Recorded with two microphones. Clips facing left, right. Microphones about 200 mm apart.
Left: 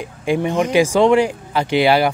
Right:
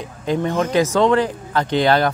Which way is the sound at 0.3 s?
15° left (ahead or behind).